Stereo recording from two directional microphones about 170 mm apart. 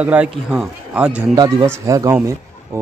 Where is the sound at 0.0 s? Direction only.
10° right (ahead or behind).